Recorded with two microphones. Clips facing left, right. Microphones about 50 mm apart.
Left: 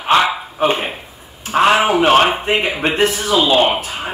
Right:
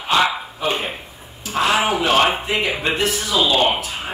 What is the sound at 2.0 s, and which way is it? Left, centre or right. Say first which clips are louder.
A man's voice: left 5 dB; left.